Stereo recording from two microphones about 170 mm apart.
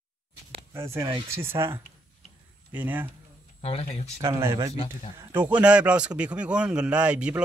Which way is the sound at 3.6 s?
35° left (ahead or behind).